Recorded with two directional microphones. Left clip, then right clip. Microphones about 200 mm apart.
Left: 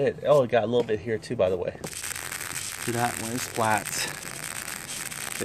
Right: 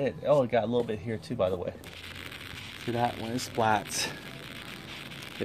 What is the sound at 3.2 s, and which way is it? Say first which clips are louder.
Speech: left 1 dB; 5° left (ahead or behind).